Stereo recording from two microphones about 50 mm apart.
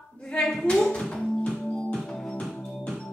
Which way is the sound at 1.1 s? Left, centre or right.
Left.